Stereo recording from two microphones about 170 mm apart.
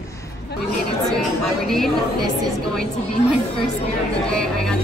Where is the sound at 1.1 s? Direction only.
Centre (ahead or behind).